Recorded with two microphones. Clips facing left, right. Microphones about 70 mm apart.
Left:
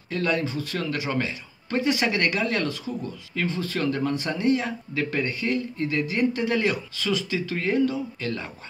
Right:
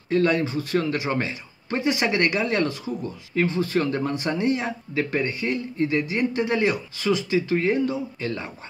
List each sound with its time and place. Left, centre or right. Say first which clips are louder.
0.1 s a man's voice: right 5 dB; right
1.8 s speech: right 1 dB; centre